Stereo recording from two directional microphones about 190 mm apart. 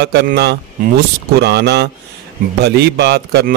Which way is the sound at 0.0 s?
60° right (ahead or behind).